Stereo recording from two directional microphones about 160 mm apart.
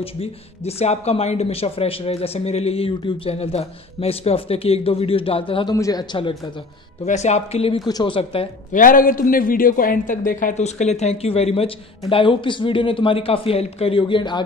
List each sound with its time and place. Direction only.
0.0 s a man's voice: 40° left (ahead or behind)
7.1 s speech: 45° left (ahead or behind)
8.7 s a man's voice: 60° left (ahead or behind); by 14.4 s 30° left (ahead or behind)